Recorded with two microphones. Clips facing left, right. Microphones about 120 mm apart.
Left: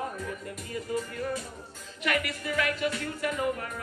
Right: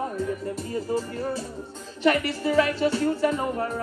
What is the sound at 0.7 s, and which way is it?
Music, 30° right (ahead or behind).